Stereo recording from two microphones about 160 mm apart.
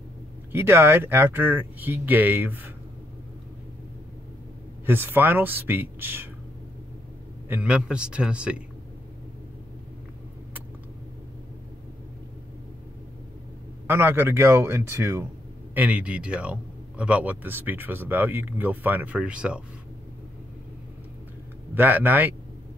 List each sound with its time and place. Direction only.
0.5 s a man's voice: 15° right (ahead or behind)
4.8 s a man's voice: 15° right (ahead or behind)
7.4 s a man's voice: 10° right (ahead or behind)
13.8 s a man's voice: 15° right (ahead or behind)
21.7 s a man's voice: 10° right (ahead or behind)